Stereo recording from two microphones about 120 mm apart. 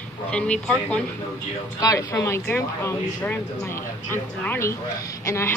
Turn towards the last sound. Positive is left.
turn(degrees=25)  # may be behind; listen again after turning